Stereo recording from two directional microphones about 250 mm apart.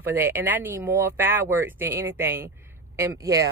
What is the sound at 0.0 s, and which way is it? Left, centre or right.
Speech, centre.